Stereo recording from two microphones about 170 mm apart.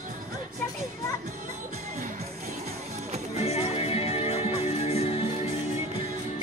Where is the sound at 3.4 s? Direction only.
35° left (ahead or behind).